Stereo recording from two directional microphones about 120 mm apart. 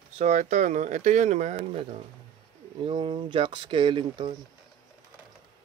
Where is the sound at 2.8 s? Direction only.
40° right (ahead or behind).